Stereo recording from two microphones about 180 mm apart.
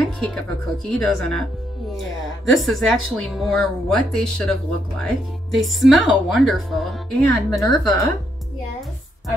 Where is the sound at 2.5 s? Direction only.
Centre (ahead or behind).